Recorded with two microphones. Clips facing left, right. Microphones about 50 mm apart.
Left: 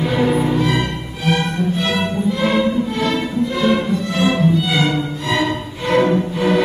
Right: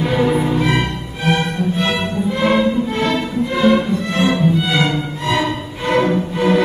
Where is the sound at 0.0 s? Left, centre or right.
Centre.